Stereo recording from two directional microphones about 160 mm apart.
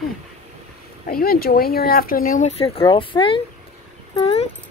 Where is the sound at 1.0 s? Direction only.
70° left (ahead or behind).